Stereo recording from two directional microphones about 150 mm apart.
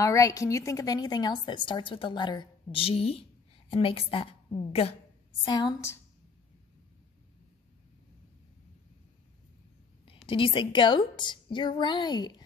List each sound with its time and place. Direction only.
0.0 s a woman's voice: 20° left (ahead or behind)
10.2 s a woman's voice: 35° left (ahead or behind)